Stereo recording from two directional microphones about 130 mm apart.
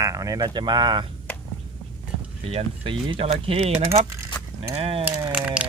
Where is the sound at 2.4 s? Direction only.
45° right (ahead or behind).